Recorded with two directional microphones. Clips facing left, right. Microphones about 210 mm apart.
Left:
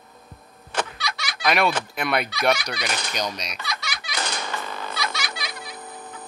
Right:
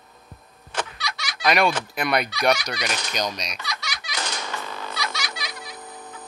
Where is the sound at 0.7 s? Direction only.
60° left (ahead or behind).